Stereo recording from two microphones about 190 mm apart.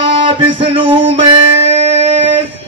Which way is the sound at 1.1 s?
30° right (ahead or behind).